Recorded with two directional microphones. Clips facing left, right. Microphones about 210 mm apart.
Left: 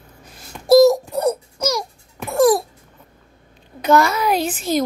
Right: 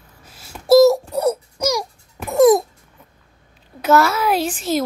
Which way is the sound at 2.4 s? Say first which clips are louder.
Right 3 dB; 20° right (ahead or behind).